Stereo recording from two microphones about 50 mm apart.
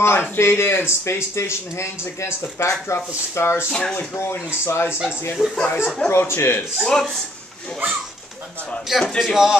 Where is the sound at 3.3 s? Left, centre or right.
Left.